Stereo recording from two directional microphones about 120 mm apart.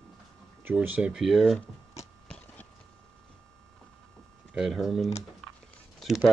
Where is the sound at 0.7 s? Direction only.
10° right (ahead or behind).